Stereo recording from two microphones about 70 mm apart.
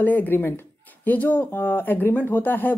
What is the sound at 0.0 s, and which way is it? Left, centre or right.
Speech, left.